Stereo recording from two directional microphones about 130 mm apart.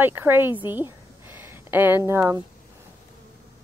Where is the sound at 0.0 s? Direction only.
15° right (ahead or behind).